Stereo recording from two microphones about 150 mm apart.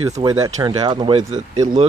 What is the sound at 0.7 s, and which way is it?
Speech, 35° right (ahead or behind).